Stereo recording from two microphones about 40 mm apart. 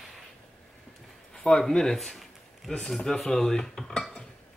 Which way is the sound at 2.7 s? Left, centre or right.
Centre.